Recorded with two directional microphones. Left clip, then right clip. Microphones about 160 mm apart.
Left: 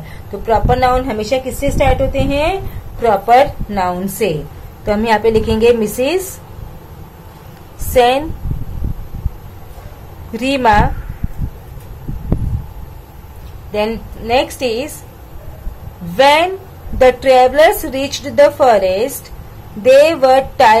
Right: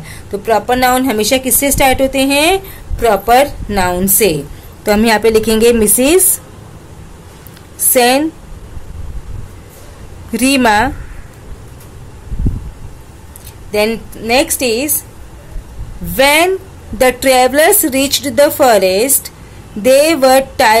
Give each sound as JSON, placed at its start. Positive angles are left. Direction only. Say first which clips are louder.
{"t": 0.5, "sound": "a woman's voice", "louder": "right 1 dB", "side_deg": -35}
{"t": 3.0, "sound": "a woman's voice", "louder": "right 1 dB", "side_deg": -35}
{"t": 7.9, "sound": "a woman's voice", "louder": "right 1 dB", "side_deg": -35}
{"t": 10.3, "sound": "a woman's voice", "louder": "right 1 dB", "side_deg": -40}
{"t": 13.7, "sound": "a woman's voice", "louder": "right 4 dB", "side_deg": -35}
{"t": 16.2, "sound": "a woman's voice", "louder": "even", "side_deg": -35}